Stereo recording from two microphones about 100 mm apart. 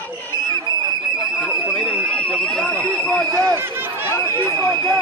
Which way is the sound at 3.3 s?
35° right (ahead or behind).